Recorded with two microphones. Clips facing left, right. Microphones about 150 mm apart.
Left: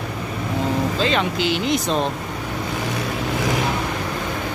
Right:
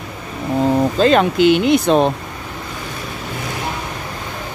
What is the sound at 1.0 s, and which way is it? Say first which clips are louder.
Speech: right 11 dB; 50° right (ahead or behind).